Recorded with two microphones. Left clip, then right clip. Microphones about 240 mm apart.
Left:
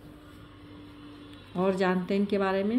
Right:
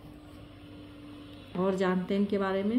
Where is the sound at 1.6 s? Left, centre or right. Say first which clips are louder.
Left 2 dB; centre.